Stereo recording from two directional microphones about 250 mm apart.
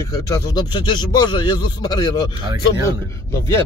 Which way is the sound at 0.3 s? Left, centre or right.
Centre.